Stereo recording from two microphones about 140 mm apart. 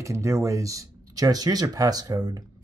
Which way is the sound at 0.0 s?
20° right (ahead or behind).